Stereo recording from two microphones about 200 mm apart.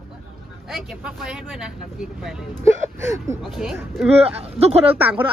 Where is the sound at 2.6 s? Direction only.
15° right (ahead or behind).